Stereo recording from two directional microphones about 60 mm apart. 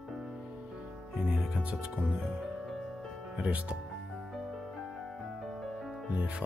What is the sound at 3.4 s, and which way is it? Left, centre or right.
Speech, centre.